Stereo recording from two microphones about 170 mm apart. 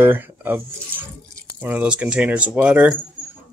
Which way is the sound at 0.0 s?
10° right (ahead or behind).